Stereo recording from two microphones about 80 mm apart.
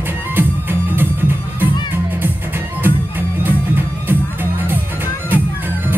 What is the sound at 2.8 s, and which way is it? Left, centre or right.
Music, right.